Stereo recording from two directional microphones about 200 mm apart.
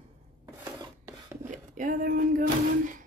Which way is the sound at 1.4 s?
40° right (ahead or behind).